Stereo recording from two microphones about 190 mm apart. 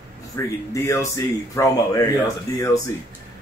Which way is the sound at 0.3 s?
15° left (ahead or behind).